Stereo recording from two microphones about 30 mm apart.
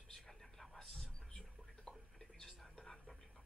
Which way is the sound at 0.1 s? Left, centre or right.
Centre.